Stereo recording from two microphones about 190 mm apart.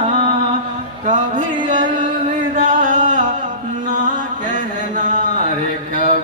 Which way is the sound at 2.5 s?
40° right (ahead or behind).